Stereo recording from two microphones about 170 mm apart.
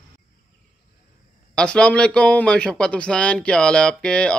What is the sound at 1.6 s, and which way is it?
Speech, 5° left (ahead or behind).